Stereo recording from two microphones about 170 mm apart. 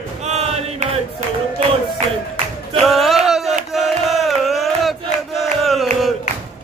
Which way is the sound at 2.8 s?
Centre (ahead or behind).